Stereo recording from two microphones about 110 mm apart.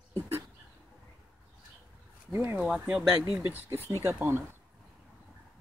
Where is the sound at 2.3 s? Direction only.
25° right (ahead or behind).